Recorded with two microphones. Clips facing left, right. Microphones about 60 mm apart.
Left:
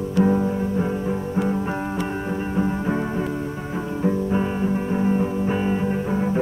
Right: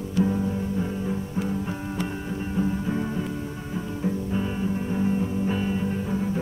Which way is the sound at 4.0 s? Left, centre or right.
Left.